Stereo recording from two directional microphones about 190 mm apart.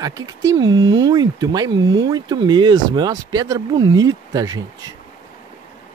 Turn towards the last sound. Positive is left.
turn(degrees=-20)  # may be behind; listen again after turning